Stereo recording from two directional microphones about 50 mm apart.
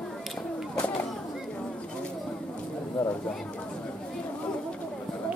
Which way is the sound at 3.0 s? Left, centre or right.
Left.